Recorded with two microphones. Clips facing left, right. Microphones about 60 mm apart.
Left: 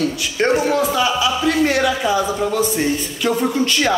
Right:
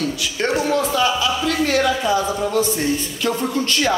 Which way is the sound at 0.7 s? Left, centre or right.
Centre.